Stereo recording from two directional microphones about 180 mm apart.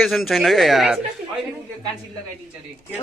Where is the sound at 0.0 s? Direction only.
Centre (ahead or behind).